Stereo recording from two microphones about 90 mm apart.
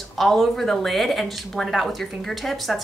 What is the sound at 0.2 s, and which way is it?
Speech, centre (ahead or behind).